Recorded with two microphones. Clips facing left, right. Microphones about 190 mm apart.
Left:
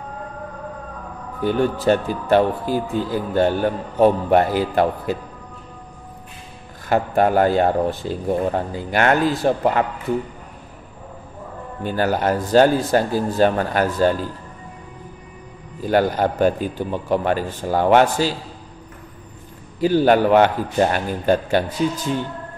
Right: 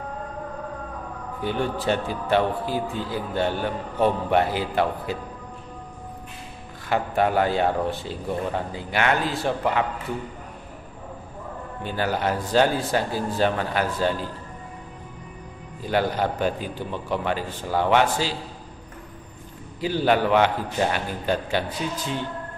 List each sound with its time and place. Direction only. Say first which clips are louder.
1.4 s speech: left 7 dB; 45° left (ahead or behind)
6.9 s speech: left 5 dB; 45° left (ahead or behind)
11.8 s speech: left 5 dB; 45° left (ahead or behind)
15.8 s speech: left 5 dB; 45° left (ahead or behind)
19.8 s speech: left 6 dB; 45° left (ahead or behind)